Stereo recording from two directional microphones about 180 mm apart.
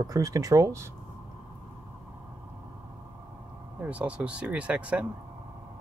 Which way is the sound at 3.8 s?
5° right (ahead or behind).